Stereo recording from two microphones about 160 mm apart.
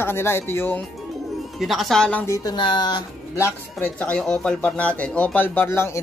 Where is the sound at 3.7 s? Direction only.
10° left (ahead or behind).